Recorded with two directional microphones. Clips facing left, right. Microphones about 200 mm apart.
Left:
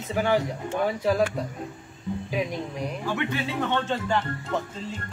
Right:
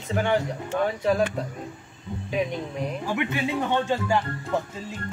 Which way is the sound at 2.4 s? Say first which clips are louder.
Right 3 dB; centre (ahead or behind).